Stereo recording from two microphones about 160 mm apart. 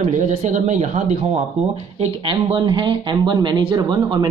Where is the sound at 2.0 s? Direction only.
35° right (ahead or behind).